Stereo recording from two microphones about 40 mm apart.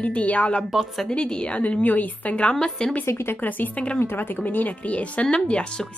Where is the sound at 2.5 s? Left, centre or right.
Centre.